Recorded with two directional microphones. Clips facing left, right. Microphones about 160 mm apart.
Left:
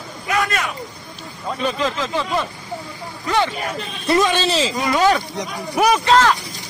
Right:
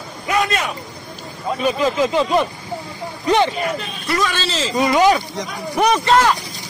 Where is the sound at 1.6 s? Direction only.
15° right (ahead or behind).